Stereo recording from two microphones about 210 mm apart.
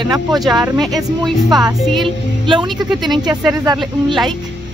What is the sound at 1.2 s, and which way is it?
Music, 20° right (ahead or behind).